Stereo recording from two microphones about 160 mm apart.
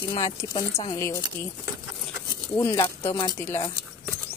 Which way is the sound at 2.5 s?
15° left (ahead or behind).